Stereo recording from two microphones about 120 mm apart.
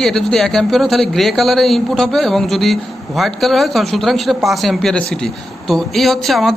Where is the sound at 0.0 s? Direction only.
5° left (ahead or behind).